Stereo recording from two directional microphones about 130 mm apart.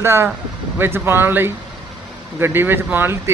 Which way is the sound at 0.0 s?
20° right (ahead or behind).